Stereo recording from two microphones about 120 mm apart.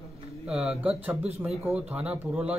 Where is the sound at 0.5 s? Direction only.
5° right (ahead or behind).